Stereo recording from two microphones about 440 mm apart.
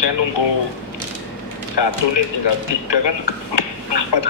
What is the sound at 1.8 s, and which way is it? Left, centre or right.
A man's voice, left.